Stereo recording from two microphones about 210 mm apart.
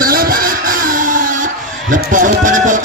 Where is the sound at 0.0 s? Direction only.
45° right (ahead or behind).